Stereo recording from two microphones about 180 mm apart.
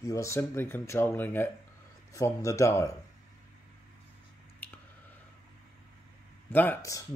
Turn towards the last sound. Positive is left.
turn(degrees=20)  # may be behind; listen again after turning